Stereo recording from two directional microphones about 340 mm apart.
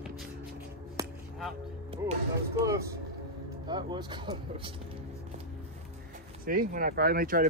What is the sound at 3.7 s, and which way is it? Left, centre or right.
Speech, centre.